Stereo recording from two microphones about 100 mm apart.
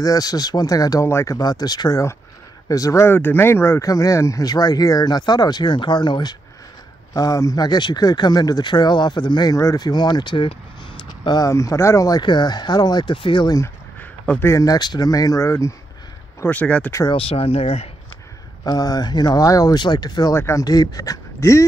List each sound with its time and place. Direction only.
0.0 s speech: 40° left (ahead or behind)
1.4 s speech: 40° left (ahead or behind); by 3.8 s 25° left (ahead or behind)
3.8 s speech: 35° left (ahead or behind)
7.2 s speech: 35° left (ahead or behind); by 10.5 s 55° left (ahead or behind)
11.2 s speech: 40° left (ahead or behind)
12.2 s speech: 50° left (ahead or behind)
14.4 s speech: 35° left (ahead or behind)
16.4 s speech: 15° left (ahead or behind)
17.1 s speech: 75° left (ahead or behind)
18.6 s speech: 40° left (ahead or behind)
20.3 s speech: 25° left (ahead or behind)
20.6 s speech: 40° left (ahead or behind)